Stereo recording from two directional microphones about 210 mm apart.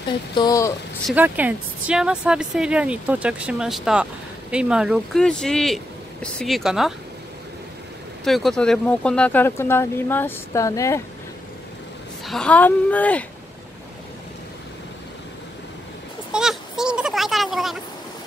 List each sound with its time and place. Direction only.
0.3 s speech: 20° left (ahead or behind)
1.0 s speech: 5° right (ahead or behind)
8.2 s speech: centre (ahead or behind)
12.3 s speech: 5° left (ahead or behind)
16.3 s a sound: 5° right (ahead or behind)